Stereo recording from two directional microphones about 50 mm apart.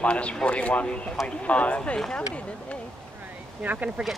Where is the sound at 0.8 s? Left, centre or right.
Centre.